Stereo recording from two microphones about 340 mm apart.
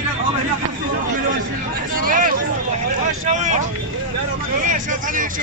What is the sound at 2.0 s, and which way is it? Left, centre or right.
Hubbub, right.